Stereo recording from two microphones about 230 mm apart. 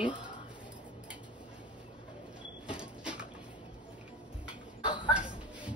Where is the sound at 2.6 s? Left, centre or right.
Centre.